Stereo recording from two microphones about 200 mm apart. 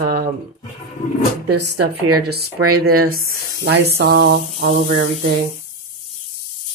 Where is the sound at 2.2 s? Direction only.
50° right (ahead or behind).